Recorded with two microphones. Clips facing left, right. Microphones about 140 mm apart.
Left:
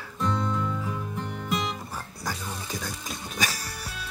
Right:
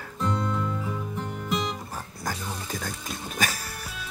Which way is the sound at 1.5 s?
Centre (ahead or behind).